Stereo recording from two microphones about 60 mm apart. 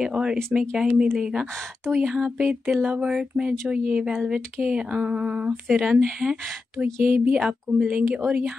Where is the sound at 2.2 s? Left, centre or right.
Centre.